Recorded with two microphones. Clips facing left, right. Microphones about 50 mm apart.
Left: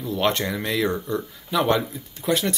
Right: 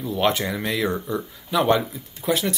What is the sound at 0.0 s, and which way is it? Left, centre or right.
Speech, centre.